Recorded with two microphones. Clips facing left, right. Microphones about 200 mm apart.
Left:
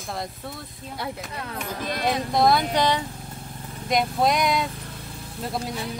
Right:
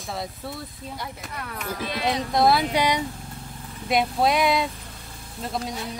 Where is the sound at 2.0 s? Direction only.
Centre (ahead or behind).